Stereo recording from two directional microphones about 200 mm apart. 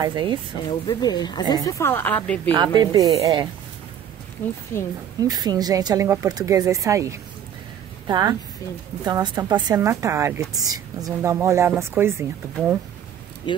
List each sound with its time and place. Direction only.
0.0 s a woman's voice: 20° right (ahead or behind)
0.7 s speech: 20° left (ahead or behind)
2.5 s a woman's voice: 20° right (ahead or behind)
4.4 s speech: 10° left (ahead or behind)
5.2 s a woman's voice: 20° right (ahead or behind)
13.5 s speech: 25° left (ahead or behind)